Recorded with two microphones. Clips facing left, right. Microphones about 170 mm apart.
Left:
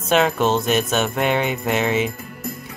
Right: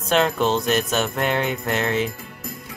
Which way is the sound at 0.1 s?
5° left (ahead or behind).